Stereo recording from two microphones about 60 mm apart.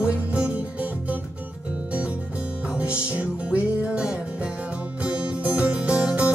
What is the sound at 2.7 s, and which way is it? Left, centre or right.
Music, centre.